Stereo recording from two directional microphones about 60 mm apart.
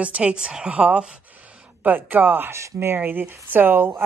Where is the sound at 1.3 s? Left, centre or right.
Right.